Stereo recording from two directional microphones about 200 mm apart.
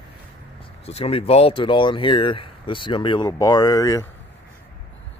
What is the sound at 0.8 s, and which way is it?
Speech, 30° left (ahead or behind).